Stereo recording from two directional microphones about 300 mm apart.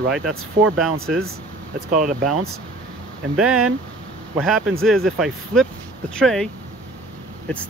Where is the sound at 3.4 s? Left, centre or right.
Centre.